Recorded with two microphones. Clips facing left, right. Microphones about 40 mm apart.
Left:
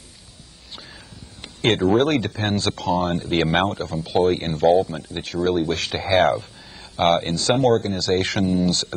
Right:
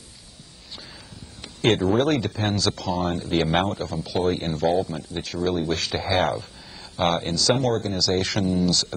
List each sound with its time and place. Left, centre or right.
1.4 s speech: left